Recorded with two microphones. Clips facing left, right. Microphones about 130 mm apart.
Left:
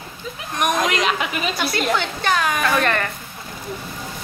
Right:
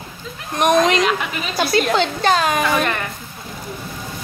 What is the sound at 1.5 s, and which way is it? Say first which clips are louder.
A woman's voice: right 7 dB; 30° right (ahead or behind).